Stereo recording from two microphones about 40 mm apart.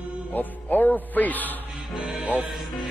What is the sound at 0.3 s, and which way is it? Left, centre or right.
Music, left.